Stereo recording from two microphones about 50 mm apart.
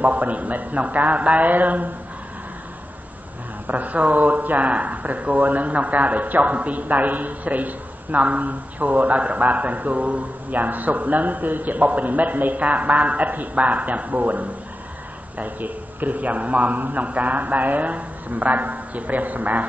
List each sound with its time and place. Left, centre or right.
0.0 s speech: right
3.6 s speech: right